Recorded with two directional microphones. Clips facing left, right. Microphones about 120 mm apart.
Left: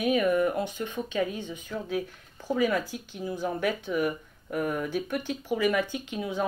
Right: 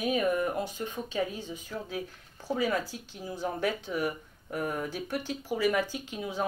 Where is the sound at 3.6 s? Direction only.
15° left (ahead or behind).